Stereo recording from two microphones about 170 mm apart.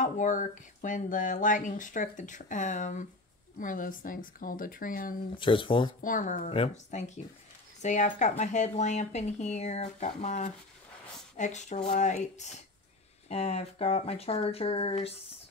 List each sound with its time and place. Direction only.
0.0 s speech: 45° left (ahead or behind)
5.4 s speech: 30° left (ahead or behind)
6.0 s speech: 50° left (ahead or behind)